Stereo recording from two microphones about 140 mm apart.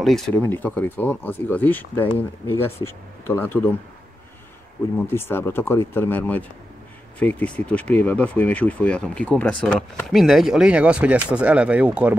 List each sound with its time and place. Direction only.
0.0 s speech: centre (ahead or behind)
0.4 s speech: 15° left (ahead or behind)
4.9 s speech: 15° left (ahead or behind); by 12.2 s 10° right (ahead or behind)